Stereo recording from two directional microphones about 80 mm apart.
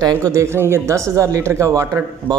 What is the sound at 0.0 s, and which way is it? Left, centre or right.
Speech, right.